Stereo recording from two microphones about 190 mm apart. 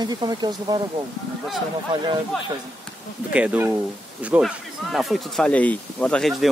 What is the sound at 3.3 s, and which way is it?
Speech, 5° right (ahead or behind).